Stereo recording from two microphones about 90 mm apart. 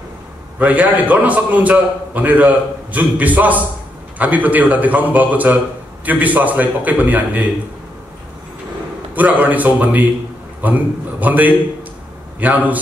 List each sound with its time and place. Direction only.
0.6 s a man's voice: 15° right (ahead or behind)
9.1 s a man's voice: 20° right (ahead or behind)